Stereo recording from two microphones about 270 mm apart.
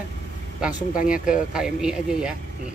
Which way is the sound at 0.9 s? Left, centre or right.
Left.